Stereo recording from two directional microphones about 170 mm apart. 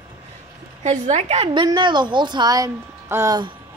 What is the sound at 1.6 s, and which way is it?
A woman's voice, 25° right (ahead or behind).